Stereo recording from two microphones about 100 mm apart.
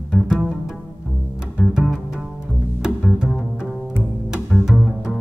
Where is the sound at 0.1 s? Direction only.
10° right (ahead or behind).